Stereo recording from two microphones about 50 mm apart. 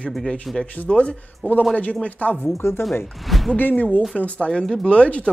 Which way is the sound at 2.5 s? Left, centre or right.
Left.